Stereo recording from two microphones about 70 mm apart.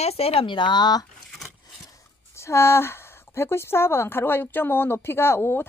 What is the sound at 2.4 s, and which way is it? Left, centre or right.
A woman's voice, left.